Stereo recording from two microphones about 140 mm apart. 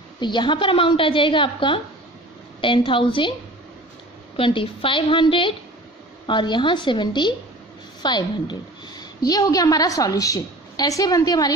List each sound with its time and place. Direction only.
0.2 s a woman's voice: 35° left (ahead or behind)
4.4 s a woman's voice: 40° left (ahead or behind)